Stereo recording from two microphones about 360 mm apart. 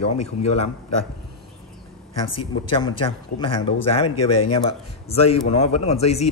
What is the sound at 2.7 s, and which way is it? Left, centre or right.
Speech, centre.